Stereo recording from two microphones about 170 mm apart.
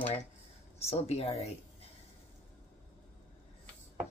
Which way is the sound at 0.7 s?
35° left (ahead or behind).